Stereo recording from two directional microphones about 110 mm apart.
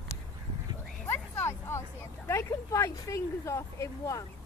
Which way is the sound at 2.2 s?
25° left (ahead or behind).